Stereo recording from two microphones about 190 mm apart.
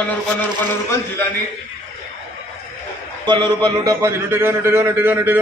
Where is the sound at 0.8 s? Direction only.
15° left (ahead or behind).